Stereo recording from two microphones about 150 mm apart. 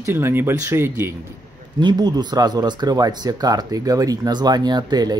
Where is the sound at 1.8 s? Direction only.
30° right (ahead or behind).